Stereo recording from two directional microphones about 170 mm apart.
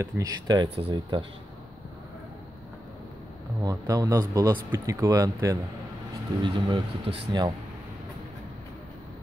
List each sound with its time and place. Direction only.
0.0 s speech: 20° right (ahead or behind)
3.6 s speech: 20° right (ahead or behind)